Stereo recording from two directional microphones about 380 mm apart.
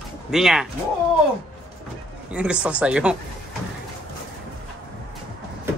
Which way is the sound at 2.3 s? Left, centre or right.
Centre.